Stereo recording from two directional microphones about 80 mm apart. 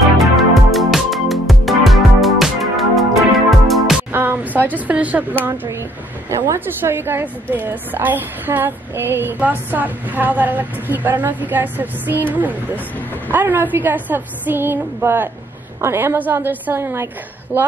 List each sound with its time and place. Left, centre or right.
0.2 s music: centre
4.1 s a sound: right
6.3 s speech: right
6.6 s a woman's voice: right